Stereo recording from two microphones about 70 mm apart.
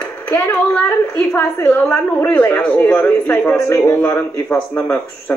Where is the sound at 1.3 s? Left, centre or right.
Left.